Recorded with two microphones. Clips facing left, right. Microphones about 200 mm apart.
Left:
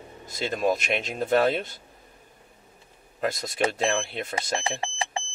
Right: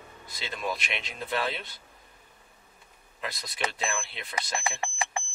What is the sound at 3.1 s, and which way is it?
Speech, 45° left (ahead or behind).